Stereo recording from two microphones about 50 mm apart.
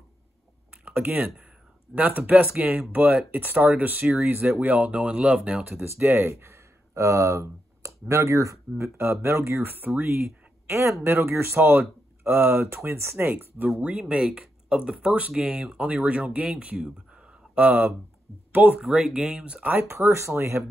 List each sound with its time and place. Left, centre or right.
0.9 s speech: right
11.1 s speech: right
12.6 s speech: right
13.7 s speech: right
14.0 s speech: centre
17.6 s speech: right
18.8 s speech: centre
19.6 s speech: right
19.9 s speech: right